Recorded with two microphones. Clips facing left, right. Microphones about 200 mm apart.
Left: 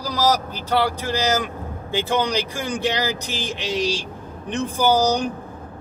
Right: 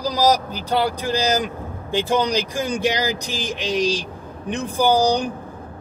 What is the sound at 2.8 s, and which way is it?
Speech, 15° right (ahead or behind).